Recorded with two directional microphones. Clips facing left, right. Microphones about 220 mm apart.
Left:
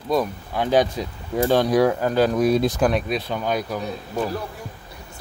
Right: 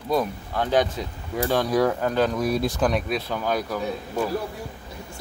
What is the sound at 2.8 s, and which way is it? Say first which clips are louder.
Speech: left 2 dB; centre (ahead or behind).